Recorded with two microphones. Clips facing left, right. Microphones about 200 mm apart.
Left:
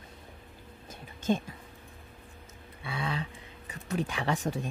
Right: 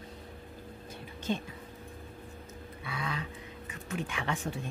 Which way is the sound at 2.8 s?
30° left (ahead or behind).